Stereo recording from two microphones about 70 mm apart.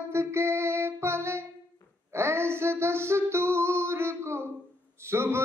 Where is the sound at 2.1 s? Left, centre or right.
Right.